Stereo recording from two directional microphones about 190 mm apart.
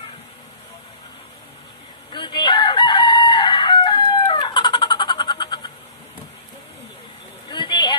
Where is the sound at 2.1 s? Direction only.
25° left (ahead or behind).